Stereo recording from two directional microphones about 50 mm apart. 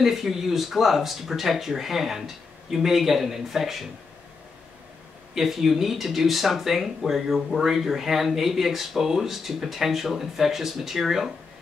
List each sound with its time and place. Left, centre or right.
0.0 s speech: centre
5.3 s speech: centre